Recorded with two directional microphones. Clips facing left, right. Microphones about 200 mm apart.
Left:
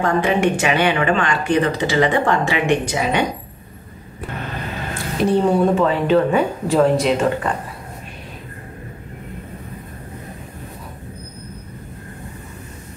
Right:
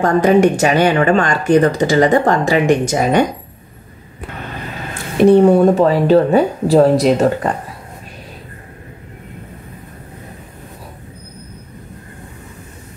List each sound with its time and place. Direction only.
0.0 s speech: 40° right (ahead or behind)
5.1 s a woman's voice: 60° right (ahead or behind)
5.8 s speech: 40° right (ahead or behind)